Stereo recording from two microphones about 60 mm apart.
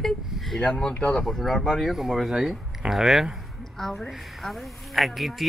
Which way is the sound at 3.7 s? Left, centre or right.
Centre.